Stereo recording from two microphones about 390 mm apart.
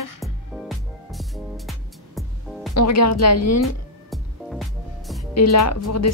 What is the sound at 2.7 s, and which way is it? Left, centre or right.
Speech, left.